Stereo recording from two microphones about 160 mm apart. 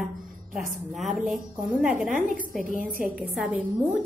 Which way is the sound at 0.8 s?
Centre (ahead or behind).